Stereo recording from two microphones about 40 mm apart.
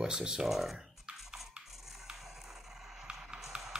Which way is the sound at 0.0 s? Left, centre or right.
Centre.